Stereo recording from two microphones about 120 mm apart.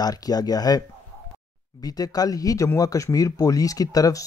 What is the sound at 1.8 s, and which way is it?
Speech, 30° left (ahead or behind).